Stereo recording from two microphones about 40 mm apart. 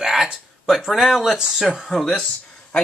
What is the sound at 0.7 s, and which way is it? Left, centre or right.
Speech, centre.